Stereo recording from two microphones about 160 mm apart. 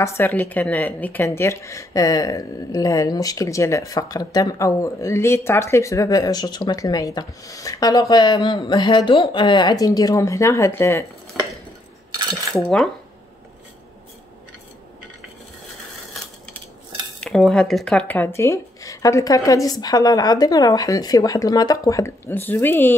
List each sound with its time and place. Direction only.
0.0 s a woman's voice: 15° left (ahead or behind)
12.5 s speech: 5° left (ahead or behind)
17.2 s a woman's voice: centre (ahead or behind)